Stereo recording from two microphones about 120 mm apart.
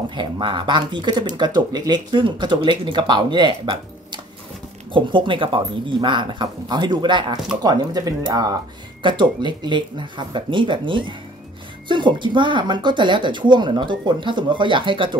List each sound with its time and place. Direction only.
0.1 s a woman's voice: 40° right (ahead or behind)